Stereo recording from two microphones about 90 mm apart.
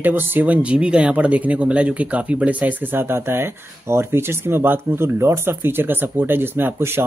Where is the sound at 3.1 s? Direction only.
30° right (ahead or behind).